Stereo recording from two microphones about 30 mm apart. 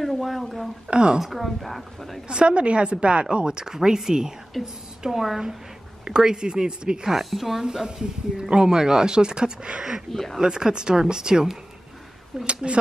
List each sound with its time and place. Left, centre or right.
0.0 s a sound: centre
0.8 s a woman's voice: right
1.2 s a woman's voice: centre
2.2 s a woman's voice: right
3.4 s speech: right
4.6 s a woman's voice: centre
5.0 s a woman's voice: centre
6.0 s speech: right
7.1 s a woman's voice: centre
7.5 s a woman's voice: right